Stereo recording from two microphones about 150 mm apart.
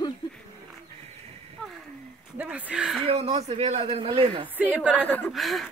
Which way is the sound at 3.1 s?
40° right (ahead or behind).